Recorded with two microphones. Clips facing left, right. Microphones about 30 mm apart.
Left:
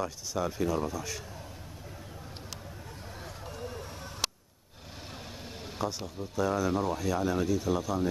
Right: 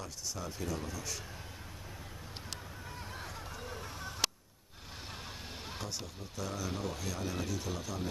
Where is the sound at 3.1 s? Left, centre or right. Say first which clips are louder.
Left 4 dB; centre.